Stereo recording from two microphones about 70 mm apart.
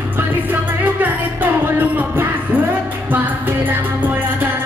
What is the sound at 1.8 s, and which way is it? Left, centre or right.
Music, right.